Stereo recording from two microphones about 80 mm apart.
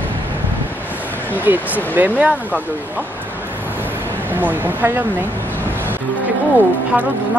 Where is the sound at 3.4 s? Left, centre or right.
Right.